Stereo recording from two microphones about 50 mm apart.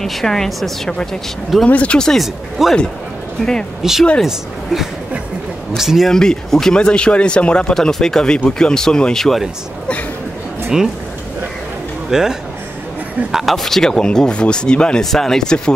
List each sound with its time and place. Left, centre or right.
0.0 s a woman's voice: centre
1.7 s speech: left
2.1 s a woman's voice: centre
3.4 s speech: centre
3.8 s a man's voice: centre
5.8 s a man's voice: centre
6.0 s speech: centre
7.7 s speech: centre
10.7 s a man's voice: centre
12.1 s a man's voice: centre